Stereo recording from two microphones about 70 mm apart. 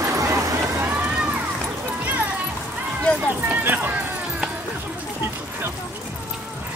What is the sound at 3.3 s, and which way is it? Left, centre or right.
Clip-clop, right.